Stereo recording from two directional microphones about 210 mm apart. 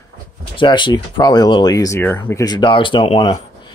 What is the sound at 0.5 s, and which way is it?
Speech, 20° left (ahead or behind).